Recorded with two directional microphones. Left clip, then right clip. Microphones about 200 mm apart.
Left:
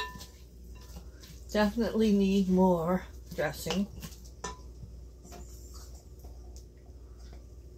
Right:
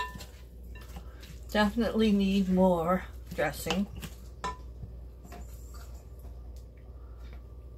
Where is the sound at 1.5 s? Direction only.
25° left (ahead or behind).